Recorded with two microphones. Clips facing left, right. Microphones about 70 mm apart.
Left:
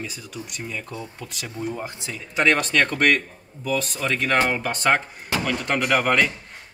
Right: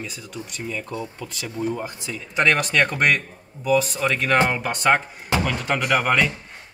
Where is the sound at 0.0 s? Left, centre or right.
Centre.